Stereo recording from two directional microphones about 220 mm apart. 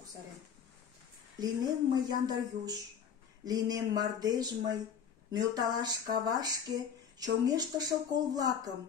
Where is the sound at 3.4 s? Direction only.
15° right (ahead or behind).